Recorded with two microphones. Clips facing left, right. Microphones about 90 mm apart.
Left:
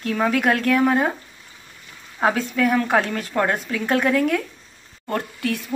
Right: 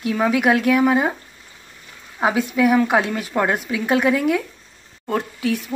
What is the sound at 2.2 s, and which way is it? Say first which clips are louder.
A woman's voice: right 2 dB; 10° right (ahead or behind).